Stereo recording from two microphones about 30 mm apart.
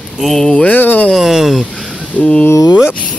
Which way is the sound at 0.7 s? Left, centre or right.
Left.